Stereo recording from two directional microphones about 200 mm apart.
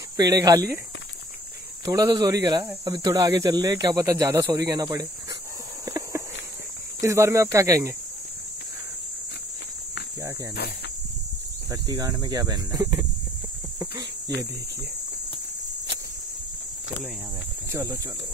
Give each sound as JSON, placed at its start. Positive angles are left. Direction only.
{"t": 0.2, "sound": "speech", "side_deg": -20}
{"t": 1.9, "sound": "speech", "side_deg": -20}
{"t": 5.9, "sound": "a sound", "side_deg": -15}
{"t": 7.0, "sound": "speech", "side_deg": -15}
{"t": 11.7, "sound": "speech", "side_deg": -20}
{"t": 13.7, "sound": "a sound", "side_deg": -15}